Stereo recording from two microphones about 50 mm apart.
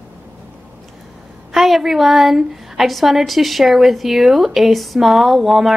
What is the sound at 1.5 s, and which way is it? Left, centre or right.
A woman's voice, centre.